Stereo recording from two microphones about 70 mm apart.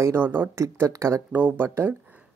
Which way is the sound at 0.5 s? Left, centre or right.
Right.